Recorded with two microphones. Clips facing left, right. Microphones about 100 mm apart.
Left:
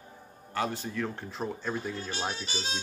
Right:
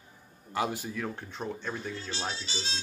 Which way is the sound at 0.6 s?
10° right (ahead or behind).